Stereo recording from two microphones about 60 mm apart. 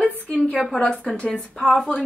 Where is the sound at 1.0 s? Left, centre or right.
Centre.